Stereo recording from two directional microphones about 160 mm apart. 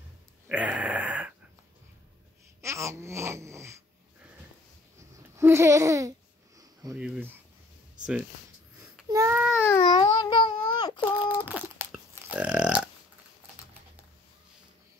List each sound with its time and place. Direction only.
0.5 s a sound: 10° right (ahead or behind)
2.6 s babbling: 20° right (ahead or behind)
5.1 s babbling: 20° right (ahead or behind)
6.6 s sniff: 20° right (ahead or behind)
7.0 s speech: 10° right (ahead or behind)
9.1 s baby cry: 20° right (ahead or behind)
9.6 s a sound: 15° left (ahead or behind)
11.4 s burping: 10° right (ahead or behind)